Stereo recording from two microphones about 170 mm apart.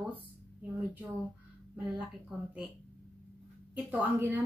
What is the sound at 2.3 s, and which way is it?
Speech, centre (ahead or behind).